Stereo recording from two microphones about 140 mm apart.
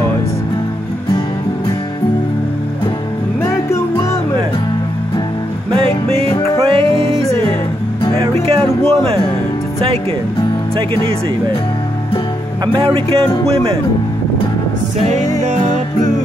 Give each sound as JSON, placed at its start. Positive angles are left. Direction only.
{"t": 3.4, "sound": "music", "side_deg": 20}
{"t": 6.7, "sound": "music", "side_deg": -40}
{"t": 12.7, "sound": "music", "side_deg": -40}